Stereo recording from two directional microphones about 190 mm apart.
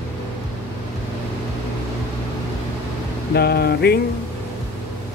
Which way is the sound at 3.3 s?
55° left (ahead or behind).